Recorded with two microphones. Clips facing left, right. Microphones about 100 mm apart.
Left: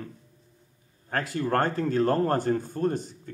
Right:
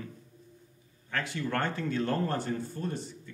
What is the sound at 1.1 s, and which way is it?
Speech, 40° left (ahead or behind).